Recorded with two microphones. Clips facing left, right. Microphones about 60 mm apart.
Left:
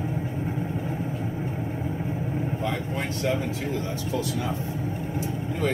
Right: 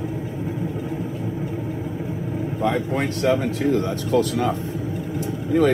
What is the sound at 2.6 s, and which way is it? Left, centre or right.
Speech, right.